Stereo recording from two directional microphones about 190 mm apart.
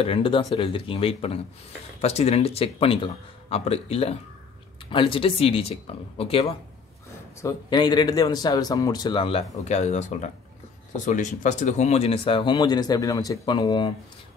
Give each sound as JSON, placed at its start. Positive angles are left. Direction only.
{"t": 0.0, "sound": "speech", "side_deg": 30}
{"t": 7.4, "sound": "speech", "side_deg": 25}